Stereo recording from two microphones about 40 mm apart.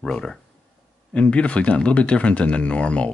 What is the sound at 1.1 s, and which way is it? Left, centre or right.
Speech, left.